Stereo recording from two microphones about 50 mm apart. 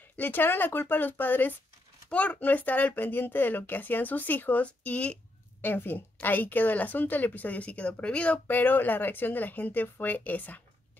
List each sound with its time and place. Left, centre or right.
0.1 s speech: left
2.0 s speech: left
5.6 s speech: left
8.5 s speech: left